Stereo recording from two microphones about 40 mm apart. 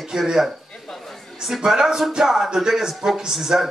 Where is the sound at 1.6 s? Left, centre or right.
Centre.